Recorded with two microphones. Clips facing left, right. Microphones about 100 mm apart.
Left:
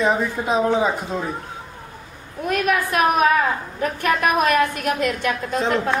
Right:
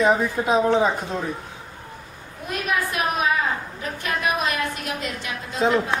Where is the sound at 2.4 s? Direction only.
55° left (ahead or behind).